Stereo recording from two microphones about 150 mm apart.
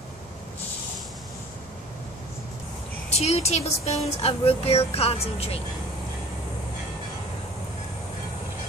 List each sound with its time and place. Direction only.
3.1 s speech: 45° left (ahead or behind)